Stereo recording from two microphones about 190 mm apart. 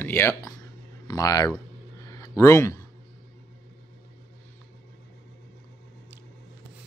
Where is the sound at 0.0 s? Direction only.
15° left (ahead or behind).